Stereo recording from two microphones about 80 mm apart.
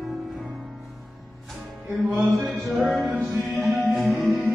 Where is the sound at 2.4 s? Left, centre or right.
Centre.